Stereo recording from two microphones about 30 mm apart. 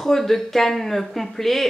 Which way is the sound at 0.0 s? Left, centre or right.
Centre.